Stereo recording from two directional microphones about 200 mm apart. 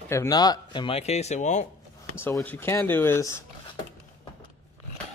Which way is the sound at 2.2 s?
10° left (ahead or behind).